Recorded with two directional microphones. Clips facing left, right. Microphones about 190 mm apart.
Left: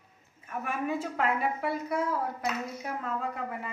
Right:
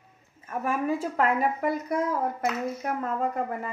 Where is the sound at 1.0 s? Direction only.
40° right (ahead or behind).